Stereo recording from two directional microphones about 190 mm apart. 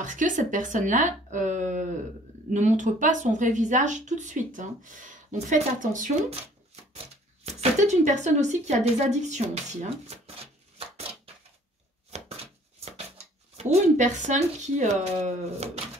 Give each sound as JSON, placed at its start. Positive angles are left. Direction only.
{"t": 0.0, "sound": "a woman's voice", "side_deg": -40}
{"t": 7.4, "sound": "a woman's voice", "side_deg": -35}
{"t": 12.1, "sound": "chopping", "side_deg": -35}
{"t": 13.6, "sound": "a woman's voice", "side_deg": -35}